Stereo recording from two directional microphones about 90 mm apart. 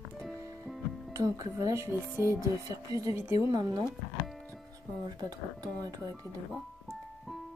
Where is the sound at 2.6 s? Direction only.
40° right (ahead or behind).